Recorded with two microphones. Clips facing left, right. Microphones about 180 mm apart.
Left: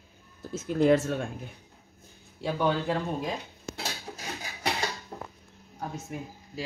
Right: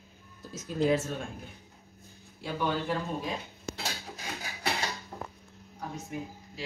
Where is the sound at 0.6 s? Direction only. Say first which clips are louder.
Left 5 dB; 60° left (ahead or behind).